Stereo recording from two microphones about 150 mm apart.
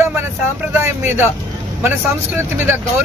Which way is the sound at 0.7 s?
15° right (ahead or behind).